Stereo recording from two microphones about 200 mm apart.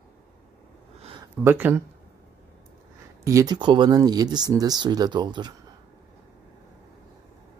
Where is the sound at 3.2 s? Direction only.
15° right (ahead or behind).